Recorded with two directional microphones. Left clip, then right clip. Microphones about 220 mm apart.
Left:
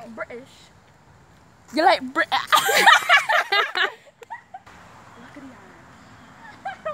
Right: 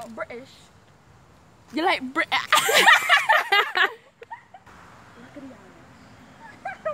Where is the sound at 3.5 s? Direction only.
5° right (ahead or behind).